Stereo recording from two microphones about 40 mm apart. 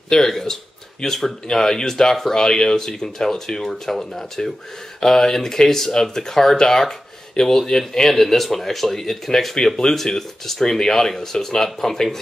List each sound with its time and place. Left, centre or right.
0.1 s speech: centre